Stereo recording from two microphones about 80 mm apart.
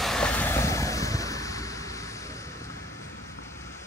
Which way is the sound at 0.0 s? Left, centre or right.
Centre.